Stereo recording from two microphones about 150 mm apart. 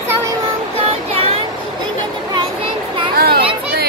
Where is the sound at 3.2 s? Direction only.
90° right.